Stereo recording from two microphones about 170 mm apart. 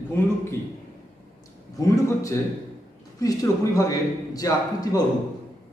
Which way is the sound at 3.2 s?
20° left (ahead or behind).